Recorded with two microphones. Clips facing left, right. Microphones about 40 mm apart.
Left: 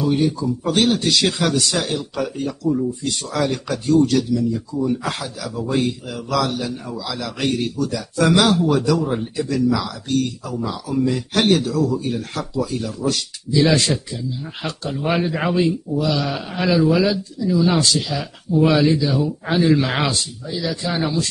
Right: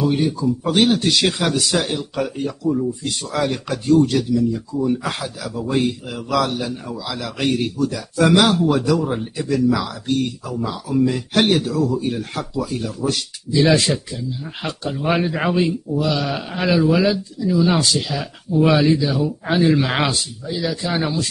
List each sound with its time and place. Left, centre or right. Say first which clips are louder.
0.0 s speech: even; centre
3.4 s speech: right 3 dB; centre
15.0 s speech: right 1 dB; centre